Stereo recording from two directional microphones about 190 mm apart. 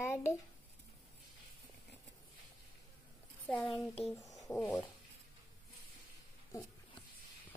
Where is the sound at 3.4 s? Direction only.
5° left (ahead or behind).